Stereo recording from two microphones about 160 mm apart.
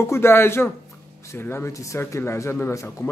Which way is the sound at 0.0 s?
15° left (ahead or behind).